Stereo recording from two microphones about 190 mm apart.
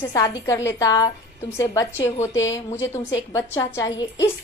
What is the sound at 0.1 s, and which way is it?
A woman's voice, 15° left (ahead or behind).